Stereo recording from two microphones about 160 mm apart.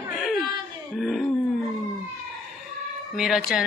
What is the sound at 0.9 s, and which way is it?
Throat clearing, centre (ahead or behind).